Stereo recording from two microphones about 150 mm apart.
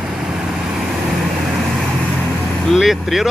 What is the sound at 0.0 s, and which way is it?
Vehicle, 5° right (ahead or behind).